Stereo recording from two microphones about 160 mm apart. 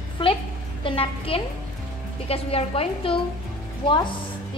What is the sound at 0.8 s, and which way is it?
A woman's voice, 35° left (ahead or behind).